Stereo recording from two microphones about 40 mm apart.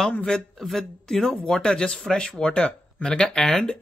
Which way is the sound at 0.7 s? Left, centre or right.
Centre.